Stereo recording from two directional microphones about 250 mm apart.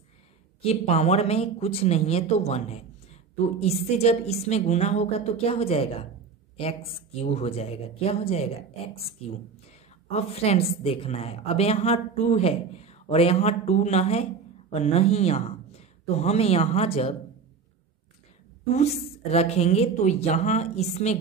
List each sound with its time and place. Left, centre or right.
0.6 s a woman's voice: left
10.0 s a woman's voice: left
19.3 s a woman's voice: left